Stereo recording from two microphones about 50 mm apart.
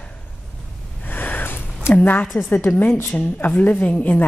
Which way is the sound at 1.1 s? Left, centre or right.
Left.